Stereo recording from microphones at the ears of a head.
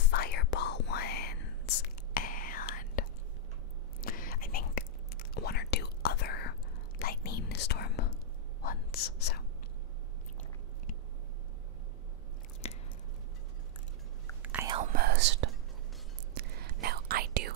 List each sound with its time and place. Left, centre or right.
0.0 s whispering: left
14.4 s whispering: right